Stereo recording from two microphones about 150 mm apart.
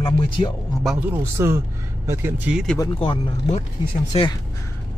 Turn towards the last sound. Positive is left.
turn(degrees=35)  # may be behind; listen again after turning